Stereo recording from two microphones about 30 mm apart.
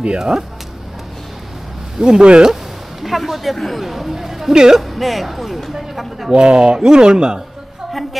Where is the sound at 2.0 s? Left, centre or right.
Right.